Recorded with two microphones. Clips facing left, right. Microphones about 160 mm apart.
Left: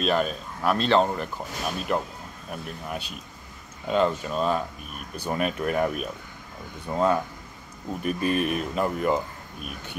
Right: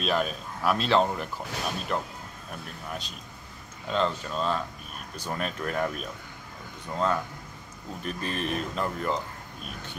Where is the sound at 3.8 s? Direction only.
10° left (ahead or behind).